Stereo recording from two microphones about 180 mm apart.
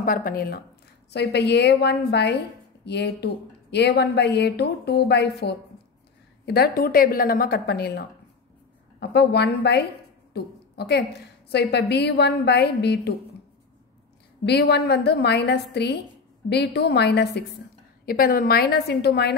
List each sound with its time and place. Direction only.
0.0 s speech: 50° left (ahead or behind)
1.1 s a woman's voice: 65° left (ahead or behind)
14.4 s a woman's voice: 70° left (ahead or behind)
18.0 s speech: 55° left (ahead or behind)